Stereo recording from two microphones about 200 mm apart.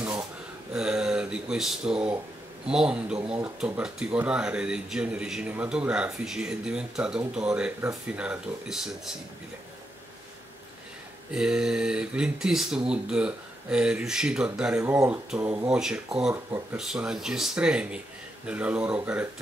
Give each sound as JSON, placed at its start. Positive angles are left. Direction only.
{"t": 0.7, "sound": "speech", "side_deg": -5}
{"t": 11.3, "sound": "speech", "side_deg": -5}